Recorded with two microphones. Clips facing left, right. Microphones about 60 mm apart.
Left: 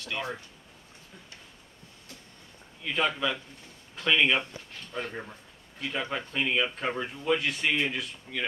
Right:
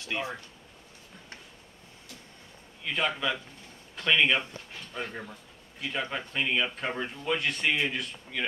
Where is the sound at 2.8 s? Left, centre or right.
Centre.